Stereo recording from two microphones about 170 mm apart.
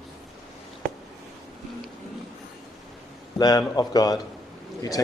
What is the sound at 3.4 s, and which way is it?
Speech, 25° left (ahead or behind).